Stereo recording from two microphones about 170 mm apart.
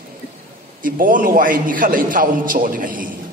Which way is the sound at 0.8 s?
55° right (ahead or behind).